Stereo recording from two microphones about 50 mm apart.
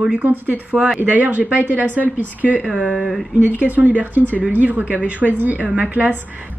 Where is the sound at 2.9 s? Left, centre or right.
Centre.